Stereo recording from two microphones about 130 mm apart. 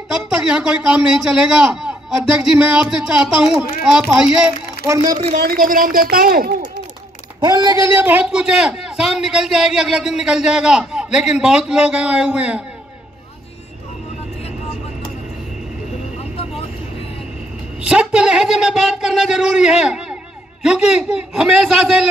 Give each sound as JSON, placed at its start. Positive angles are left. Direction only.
{"t": 0.1, "sound": "a man's voice", "side_deg": -5}
{"t": 4.8, "sound": "speech", "side_deg": -25}
{"t": 5.3, "sound": "a woman's voice", "side_deg": -90}
{"t": 7.4, "sound": "a man's voice", "side_deg": -30}
{"t": 16.2, "sound": "vehicle", "side_deg": 50}
{"t": 17.8, "sound": "a man's voice", "side_deg": -5}